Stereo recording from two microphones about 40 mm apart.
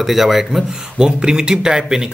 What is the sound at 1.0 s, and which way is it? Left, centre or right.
Speech, centre.